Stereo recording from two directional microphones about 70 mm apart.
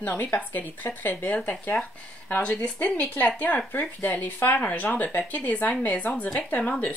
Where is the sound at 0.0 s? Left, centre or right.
Left.